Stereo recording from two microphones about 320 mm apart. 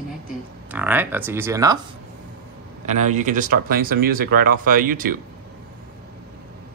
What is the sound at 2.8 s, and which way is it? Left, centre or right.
Speech, right.